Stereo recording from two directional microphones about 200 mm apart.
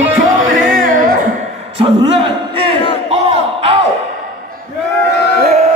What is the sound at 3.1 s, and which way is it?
Crowd, 30° right (ahead or behind).